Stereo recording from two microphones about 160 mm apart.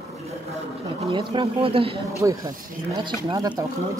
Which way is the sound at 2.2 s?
25° right (ahead or behind).